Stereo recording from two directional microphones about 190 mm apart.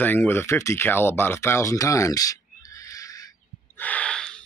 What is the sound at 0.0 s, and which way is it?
Speech, 10° left (ahead or behind).